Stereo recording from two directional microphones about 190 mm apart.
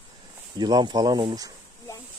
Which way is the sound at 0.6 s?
20° right (ahead or behind).